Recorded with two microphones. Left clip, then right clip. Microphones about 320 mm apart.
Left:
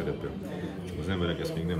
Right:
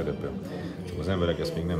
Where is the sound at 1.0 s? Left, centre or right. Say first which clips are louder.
Right 4 dB; centre.